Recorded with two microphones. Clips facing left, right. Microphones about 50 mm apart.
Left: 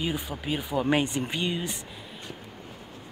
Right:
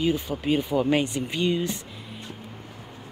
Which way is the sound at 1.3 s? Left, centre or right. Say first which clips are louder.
Right 5 dB; centre.